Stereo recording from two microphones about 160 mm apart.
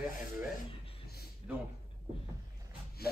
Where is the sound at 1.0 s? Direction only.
80° left.